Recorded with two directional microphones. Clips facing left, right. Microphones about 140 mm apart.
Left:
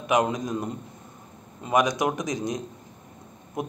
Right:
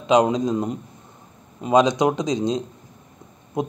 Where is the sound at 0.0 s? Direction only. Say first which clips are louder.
Right 6 dB; 20° right (ahead or behind).